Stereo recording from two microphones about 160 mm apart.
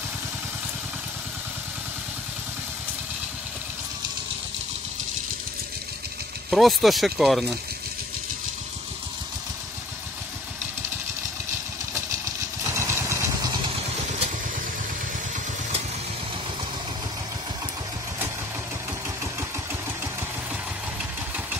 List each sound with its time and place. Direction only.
6.5 s speech: centre (ahead or behind)
12.7 s vehicle: 15° right (ahead or behind)